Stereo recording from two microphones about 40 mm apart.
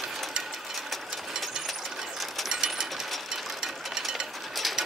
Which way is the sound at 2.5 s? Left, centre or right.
Centre.